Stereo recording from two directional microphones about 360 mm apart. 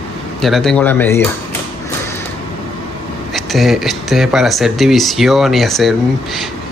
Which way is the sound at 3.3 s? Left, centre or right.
Centre.